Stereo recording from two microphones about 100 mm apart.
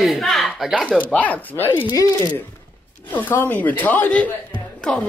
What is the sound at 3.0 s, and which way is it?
Speech, 20° left (ahead or behind).